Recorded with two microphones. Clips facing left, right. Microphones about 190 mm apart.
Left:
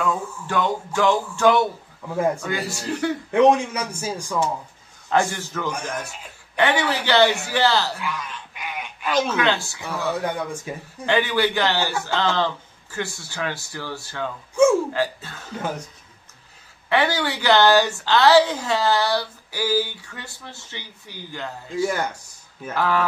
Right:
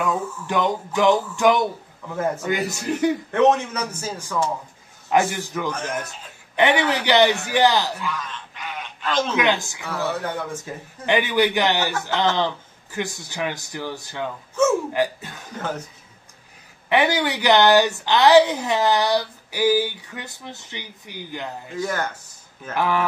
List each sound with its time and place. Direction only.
0.0 s a woman's voice: 20° right (ahead or behind)
2.0 s a man's voice: 10° left (ahead or behind)
2.4 s a man's voice: 20° right (ahead or behind)
3.3 s a man's voice: 10° left (ahead or behind)
5.3 s a woman's voice: 15° right (ahead or behind)
8.0 s a sound: 10° left (ahead or behind)
9.3 s a woman's voice: 15° right (ahead or behind)
9.8 s a man's voice: 15° left (ahead or behind)
11.1 s a woman's voice: 15° right (ahead or behind)
16.9 s a woman's voice: 15° right (ahead or behind)
21.8 s a man's voice: 10° left (ahead or behind)
22.8 s a woman's voice: 15° right (ahead or behind)